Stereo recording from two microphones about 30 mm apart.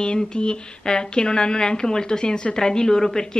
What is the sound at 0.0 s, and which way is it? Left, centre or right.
A woman's voice, left.